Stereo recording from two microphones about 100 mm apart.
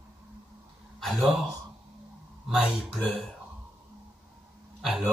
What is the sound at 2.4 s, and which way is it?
Speech, 5° right (ahead or behind).